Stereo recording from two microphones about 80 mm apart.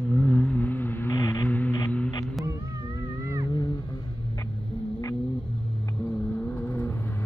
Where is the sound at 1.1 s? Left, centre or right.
Left.